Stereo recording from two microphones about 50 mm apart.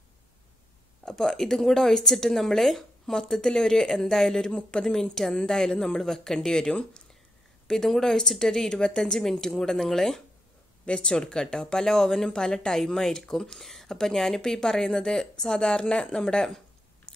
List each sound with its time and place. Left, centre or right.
1.0 s speech: centre
6.7 s speech: left
7.6 s speech: centre
10.9 s speech: centre